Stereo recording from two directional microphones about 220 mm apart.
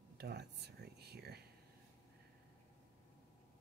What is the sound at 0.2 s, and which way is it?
Speech, 50° right (ahead or behind).